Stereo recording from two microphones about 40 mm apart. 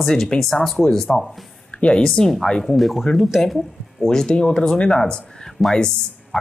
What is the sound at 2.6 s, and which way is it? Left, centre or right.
Speech, centre.